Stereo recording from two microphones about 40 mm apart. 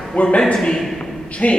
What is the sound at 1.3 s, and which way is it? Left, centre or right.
Speech, left.